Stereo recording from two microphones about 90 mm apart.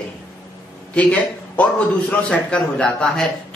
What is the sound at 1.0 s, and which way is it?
A man's voice, 15° left (ahead or behind).